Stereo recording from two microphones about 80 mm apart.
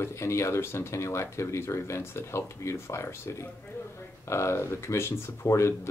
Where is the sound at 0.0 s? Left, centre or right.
Left.